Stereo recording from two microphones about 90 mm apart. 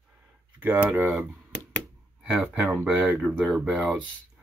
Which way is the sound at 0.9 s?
25° right (ahead or behind).